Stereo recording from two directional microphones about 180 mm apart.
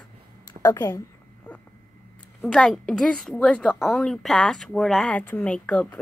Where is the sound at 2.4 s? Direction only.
Centre (ahead or behind).